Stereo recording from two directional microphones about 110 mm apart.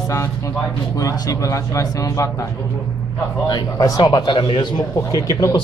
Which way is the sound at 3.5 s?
35° left (ahead or behind).